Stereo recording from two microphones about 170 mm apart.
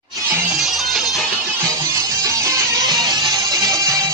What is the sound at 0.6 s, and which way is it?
Music, centre (ahead or behind).